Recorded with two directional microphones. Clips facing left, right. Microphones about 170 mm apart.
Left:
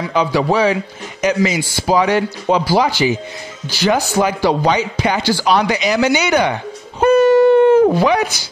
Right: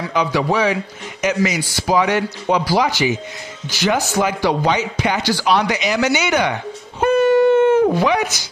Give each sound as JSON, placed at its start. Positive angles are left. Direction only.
{"t": 0.1, "sound": "a man's voice", "side_deg": 30}
{"t": 7.0, "sound": "wail", "side_deg": 40}